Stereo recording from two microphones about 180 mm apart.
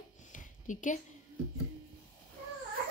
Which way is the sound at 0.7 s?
45° left (ahead or behind).